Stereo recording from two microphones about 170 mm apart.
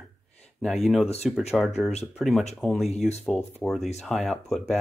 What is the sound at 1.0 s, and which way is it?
Speech, 40° left (ahead or behind).